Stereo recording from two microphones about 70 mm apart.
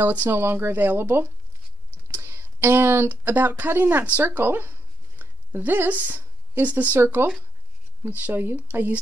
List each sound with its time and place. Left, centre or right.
0.1 s speech: right